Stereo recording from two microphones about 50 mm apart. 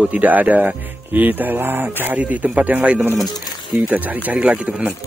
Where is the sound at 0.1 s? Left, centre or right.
Right.